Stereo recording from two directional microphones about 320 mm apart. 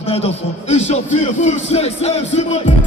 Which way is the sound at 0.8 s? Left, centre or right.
Left.